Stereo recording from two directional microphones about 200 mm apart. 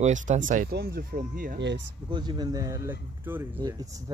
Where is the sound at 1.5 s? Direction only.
60° right (ahead or behind).